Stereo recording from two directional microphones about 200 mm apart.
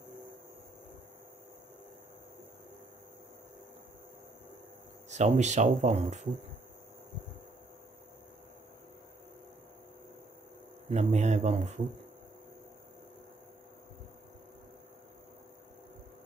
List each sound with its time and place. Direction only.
5.1 s speech: 35° right (ahead or behind)
10.9 s speech: 35° right (ahead or behind)